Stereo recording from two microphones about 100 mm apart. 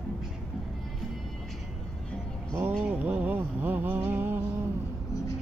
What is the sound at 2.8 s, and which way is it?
Music, 15° right (ahead or behind).